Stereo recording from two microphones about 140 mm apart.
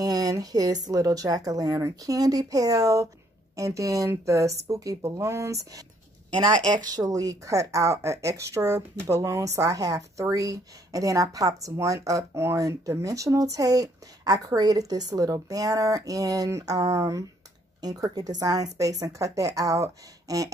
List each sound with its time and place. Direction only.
0.0 s speech: 25° right (ahead or behind)
6.6 s speech: 65° right (ahead or behind)
7.0 s speech: 25° right (ahead or behind)